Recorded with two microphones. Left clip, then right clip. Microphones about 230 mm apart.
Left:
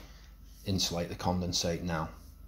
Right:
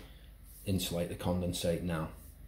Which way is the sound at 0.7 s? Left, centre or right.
Left.